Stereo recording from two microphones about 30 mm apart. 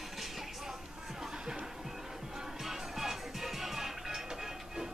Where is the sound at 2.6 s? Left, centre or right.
Centre.